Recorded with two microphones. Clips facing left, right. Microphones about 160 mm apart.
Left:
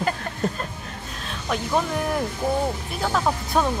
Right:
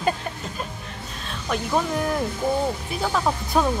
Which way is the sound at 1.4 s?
Centre (ahead or behind).